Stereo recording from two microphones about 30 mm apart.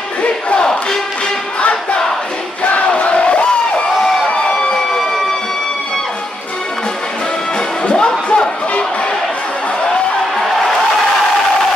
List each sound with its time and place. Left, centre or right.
1.6 s a sound: left
2.9 s crowd: left
7.8 s music: left